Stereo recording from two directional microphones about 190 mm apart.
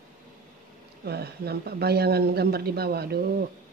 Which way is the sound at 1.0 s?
55° right (ahead or behind).